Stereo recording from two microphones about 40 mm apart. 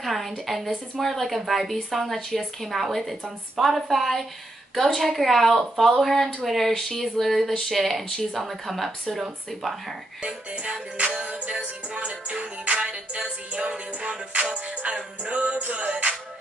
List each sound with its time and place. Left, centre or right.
0.0 s a woman's voice: centre
10.2 s music: right